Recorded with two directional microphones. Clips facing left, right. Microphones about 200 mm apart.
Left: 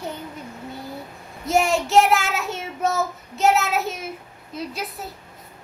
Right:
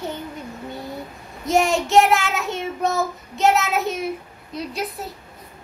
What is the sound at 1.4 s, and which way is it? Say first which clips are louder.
Child singing: right 1 dB; centre (ahead or behind).